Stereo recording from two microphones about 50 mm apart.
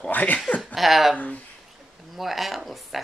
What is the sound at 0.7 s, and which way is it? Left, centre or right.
Speech, centre.